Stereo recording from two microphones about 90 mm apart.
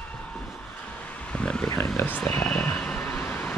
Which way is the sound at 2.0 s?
20° left (ahead or behind).